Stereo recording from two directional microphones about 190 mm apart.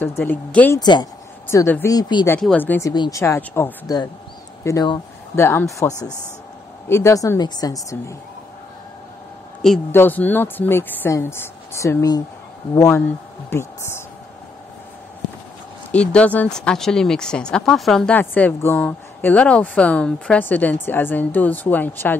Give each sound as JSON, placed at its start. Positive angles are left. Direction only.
{"t": 0.0, "sound": "speech", "side_deg": 10}
{"t": 0.7, "sound": "speech", "side_deg": 25}
{"t": 2.4, "sound": "speech", "side_deg": 10}
{"t": 9.6, "sound": "speech", "side_deg": 0}
{"t": 15.9, "sound": "speech", "side_deg": 5}